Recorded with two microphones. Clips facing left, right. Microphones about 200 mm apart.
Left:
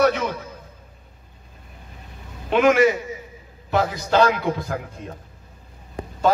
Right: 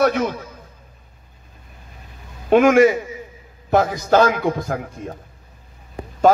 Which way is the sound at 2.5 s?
50° right (ahead or behind).